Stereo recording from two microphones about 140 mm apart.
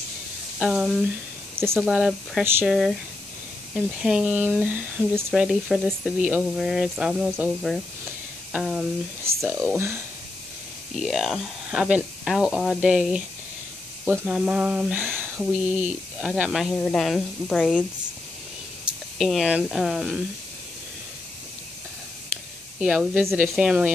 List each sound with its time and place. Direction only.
0.6 s speech: 5° right (ahead or behind)
1.6 s speech: 15° right (ahead or behind)
11.0 s speech: centre (ahead or behind)
16.7 s speech: 10° left (ahead or behind)
19.1 s speech: centre (ahead or behind)
22.8 s speech: 5° right (ahead or behind)